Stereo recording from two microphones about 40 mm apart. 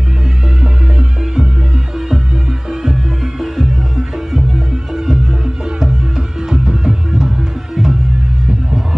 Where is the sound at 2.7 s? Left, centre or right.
Centre.